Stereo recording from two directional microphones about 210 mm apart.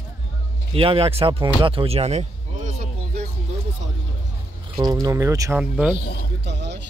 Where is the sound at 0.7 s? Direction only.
25° right (ahead or behind).